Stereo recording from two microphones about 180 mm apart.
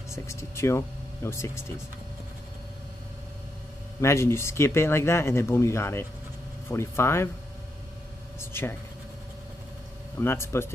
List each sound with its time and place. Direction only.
0.1 s speech: 15° left (ahead or behind)
4.0 s speech: 15° left (ahead or behind)
8.4 s speech: 15° left (ahead or behind)
10.2 s speech: 15° left (ahead or behind)